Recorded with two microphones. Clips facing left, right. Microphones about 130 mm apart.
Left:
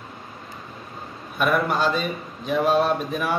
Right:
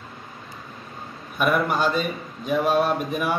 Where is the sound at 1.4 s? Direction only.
10° right (ahead or behind).